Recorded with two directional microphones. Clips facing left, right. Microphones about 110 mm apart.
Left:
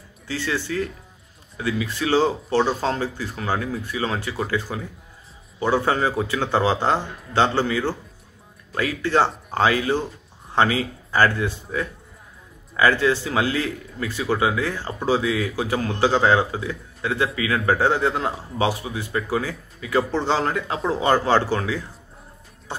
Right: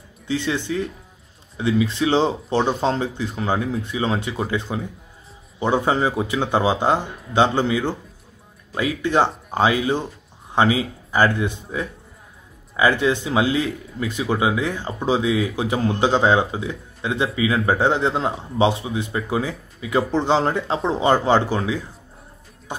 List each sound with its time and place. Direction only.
0.3 s speech: 20° right (ahead or behind)
9.0 s speech: 15° right (ahead or behind)